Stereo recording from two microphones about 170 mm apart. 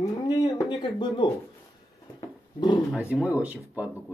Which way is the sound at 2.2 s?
25° left (ahead or behind).